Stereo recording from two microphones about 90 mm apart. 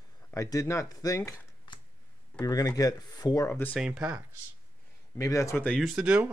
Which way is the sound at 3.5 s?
20° left (ahead or behind).